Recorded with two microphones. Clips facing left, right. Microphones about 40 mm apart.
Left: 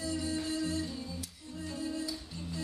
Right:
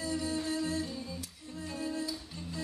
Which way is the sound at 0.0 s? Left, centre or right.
Right.